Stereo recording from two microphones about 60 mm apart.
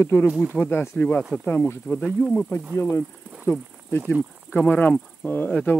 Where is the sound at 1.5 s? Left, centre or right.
Left.